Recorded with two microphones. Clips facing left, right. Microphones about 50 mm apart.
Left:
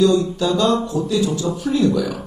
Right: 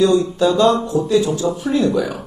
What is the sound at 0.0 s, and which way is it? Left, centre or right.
Speech, right.